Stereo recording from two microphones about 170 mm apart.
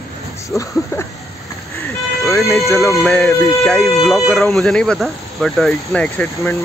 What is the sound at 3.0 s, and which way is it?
Speech, centre (ahead or behind).